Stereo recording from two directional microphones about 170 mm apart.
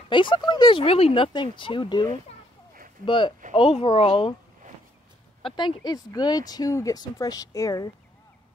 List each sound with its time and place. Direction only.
0.1 s speech: 30° left (ahead or behind)
5.4 s speech: 30° left (ahead or behind)